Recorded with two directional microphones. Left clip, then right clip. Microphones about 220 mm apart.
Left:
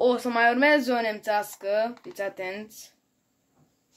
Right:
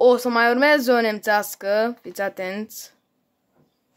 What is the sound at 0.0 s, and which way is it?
Speech, 25° right (ahead or behind).